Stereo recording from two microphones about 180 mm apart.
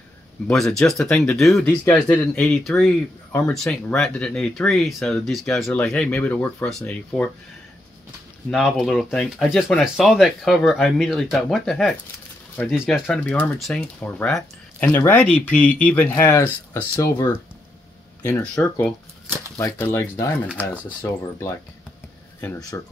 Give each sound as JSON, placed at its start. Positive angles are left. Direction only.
{"t": 0.5, "sound": "speech", "side_deg": 5}
{"t": 8.5, "sound": "speech", "side_deg": 0}
{"t": 18.4, "sound": "speech", "side_deg": 5}
{"t": 22.7, "sound": "speech", "side_deg": 15}